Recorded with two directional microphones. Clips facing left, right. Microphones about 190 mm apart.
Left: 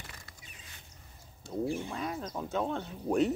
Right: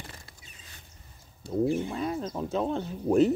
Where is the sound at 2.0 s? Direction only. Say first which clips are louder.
Right 6 dB; 30° right (ahead or behind).